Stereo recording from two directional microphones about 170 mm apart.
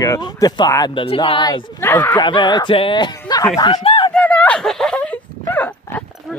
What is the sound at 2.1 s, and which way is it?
Speech, 25° left (ahead or behind).